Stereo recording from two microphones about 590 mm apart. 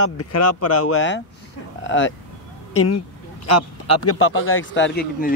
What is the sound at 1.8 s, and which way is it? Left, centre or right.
Vehicle, centre.